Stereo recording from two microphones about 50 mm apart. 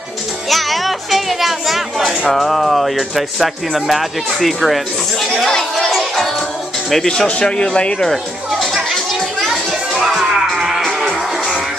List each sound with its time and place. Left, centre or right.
0.5 s speech: centre
5.4 s a sound: centre
6.9 s speech: centre
8.1 s music: centre